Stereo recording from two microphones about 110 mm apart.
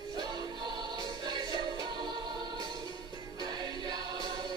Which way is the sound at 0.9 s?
40° right (ahead or behind).